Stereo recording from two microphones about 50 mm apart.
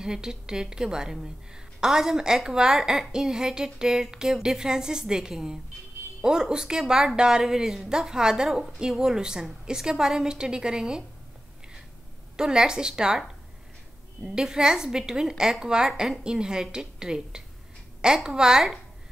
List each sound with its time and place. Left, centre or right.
0.0 s a woman's voice: centre
12.4 s a woman's voice: centre
14.2 s a woman's voice: centre